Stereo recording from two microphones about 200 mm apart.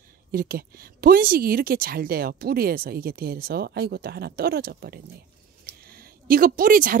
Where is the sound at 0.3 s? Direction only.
45° right (ahead or behind).